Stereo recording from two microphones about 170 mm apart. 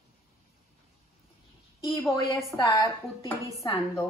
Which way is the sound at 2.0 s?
15° left (ahead or behind).